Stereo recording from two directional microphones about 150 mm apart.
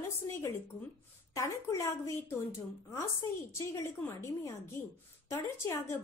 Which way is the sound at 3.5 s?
20° left (ahead or behind).